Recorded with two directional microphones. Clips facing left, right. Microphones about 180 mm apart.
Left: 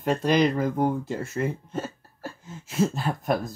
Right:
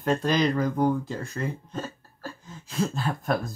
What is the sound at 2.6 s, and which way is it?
Speech, 20° left (ahead or behind).